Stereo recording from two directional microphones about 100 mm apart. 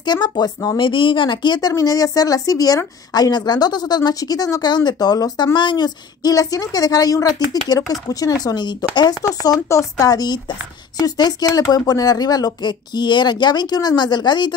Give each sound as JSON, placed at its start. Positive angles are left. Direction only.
{"t": 0.0, "sound": "a woman's voice", "side_deg": 45}
{"t": 9.4, "sound": "a woman's voice", "side_deg": 35}